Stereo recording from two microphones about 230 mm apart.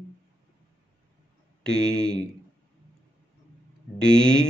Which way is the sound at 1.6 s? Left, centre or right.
Centre.